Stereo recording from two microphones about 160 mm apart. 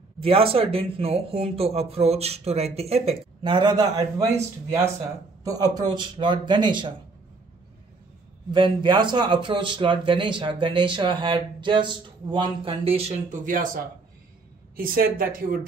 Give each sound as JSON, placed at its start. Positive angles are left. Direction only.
{"t": 0.2, "sound": "speech", "side_deg": -35}
{"t": 3.4, "sound": "speech", "side_deg": -30}
{"t": 5.4, "sound": "speech", "side_deg": -25}
{"t": 8.5, "sound": "speech", "side_deg": -30}
{"t": 14.8, "sound": "a woman's voice", "side_deg": -65}